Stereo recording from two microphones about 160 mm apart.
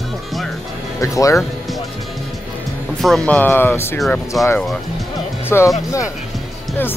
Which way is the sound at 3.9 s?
Centre (ahead or behind).